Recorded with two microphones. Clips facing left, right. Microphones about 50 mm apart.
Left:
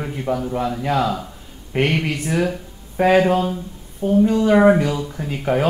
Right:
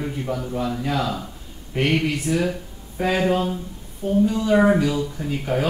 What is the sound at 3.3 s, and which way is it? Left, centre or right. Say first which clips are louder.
Speech: left 3 dB; centre.